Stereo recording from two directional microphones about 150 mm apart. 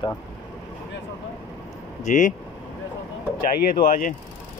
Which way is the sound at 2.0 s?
55° left (ahead or behind).